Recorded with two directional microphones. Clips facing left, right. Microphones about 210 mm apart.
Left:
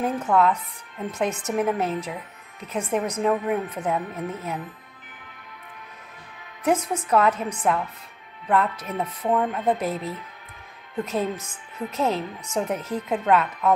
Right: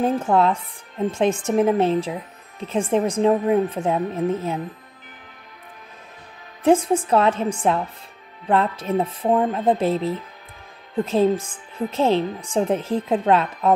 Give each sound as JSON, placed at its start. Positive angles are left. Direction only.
{"t": 0.0, "sound": "a woman's voice", "side_deg": -30}
{"t": 6.6, "sound": "a woman's voice", "side_deg": -30}